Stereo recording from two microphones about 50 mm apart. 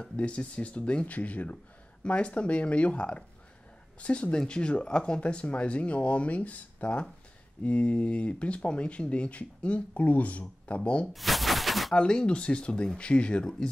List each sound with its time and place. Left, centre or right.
0.0 s speech: left
11.1 s a sound: centre
11.9 s speech: centre